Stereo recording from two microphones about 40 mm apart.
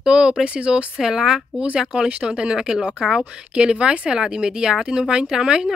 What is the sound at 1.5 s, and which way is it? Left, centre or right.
Speech, right.